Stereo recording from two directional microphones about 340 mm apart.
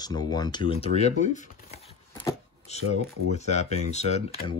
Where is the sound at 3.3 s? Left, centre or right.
Centre.